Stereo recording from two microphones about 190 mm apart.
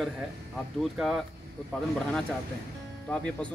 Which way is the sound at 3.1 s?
5° left (ahead or behind).